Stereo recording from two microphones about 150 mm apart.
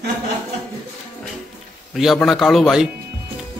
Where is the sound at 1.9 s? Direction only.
Centre (ahead or behind).